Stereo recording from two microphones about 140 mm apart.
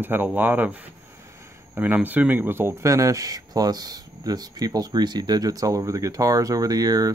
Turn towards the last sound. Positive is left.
turn(degrees=-25)  # may be behind; listen again after turning